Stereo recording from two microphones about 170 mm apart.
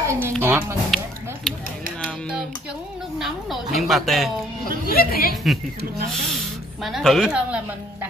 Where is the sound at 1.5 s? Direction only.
5° left (ahead or behind).